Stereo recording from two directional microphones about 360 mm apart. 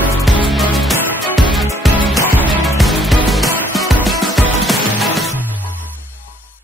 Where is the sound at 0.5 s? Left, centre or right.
Centre.